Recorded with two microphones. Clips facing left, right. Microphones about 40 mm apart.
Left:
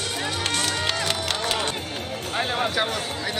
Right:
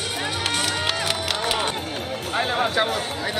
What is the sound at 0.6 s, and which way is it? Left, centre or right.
Run, centre.